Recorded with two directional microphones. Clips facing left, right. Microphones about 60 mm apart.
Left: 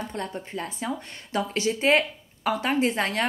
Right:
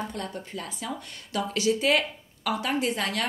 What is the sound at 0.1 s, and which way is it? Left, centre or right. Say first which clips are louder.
A woman's voice: left 2 dB; left.